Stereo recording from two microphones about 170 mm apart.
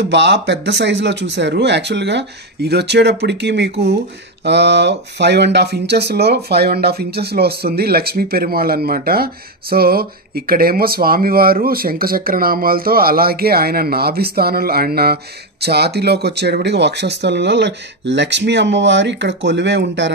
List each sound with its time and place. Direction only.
0.0 s speech: 90° right